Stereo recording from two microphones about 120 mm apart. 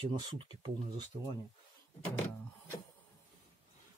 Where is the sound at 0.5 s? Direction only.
40° right (ahead or behind).